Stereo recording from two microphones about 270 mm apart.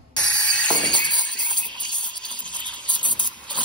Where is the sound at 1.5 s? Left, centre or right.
Centre.